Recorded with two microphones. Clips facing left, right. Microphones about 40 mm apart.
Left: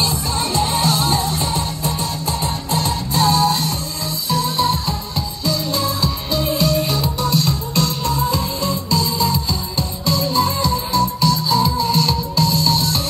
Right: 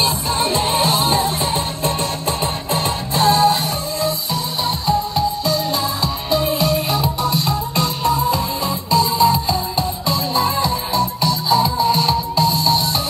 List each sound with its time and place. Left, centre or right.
0.0 s music: right
4.3 s music: centre